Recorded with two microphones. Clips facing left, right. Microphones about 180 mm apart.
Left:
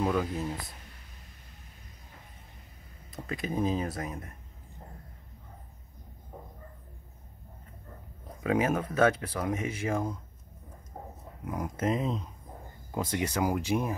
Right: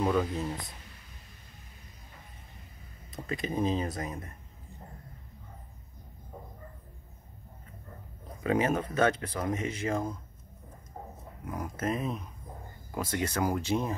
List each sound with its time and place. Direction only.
0.0 s speech: centre (ahead or behind)
3.1 s speech: 5° left (ahead or behind)
8.5 s speech: 5° left (ahead or behind)
11.4 s speech: 20° left (ahead or behind)